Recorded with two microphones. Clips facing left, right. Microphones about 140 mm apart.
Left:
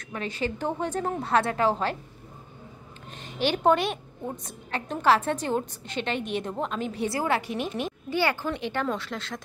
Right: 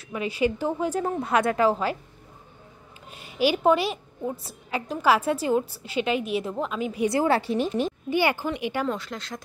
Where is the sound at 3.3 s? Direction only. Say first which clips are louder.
Right 2 dB; 10° right (ahead or behind).